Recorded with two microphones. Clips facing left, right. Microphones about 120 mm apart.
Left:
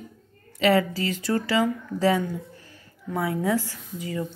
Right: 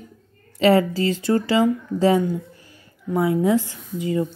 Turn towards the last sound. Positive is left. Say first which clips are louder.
# right 7 dB
turn(degrees=-25)  # may be behind; listen again after turning